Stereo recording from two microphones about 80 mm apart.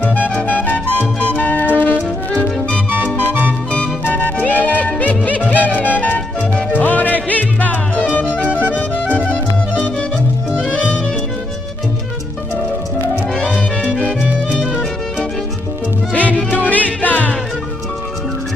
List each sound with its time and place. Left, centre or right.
0.0 s music: left
10.5 s music: centre
13.3 s music: centre
13.9 s music: right
14.6 s music: centre
16.1 s music: centre